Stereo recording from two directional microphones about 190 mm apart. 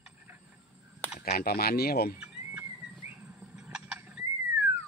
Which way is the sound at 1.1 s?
55° left (ahead or behind).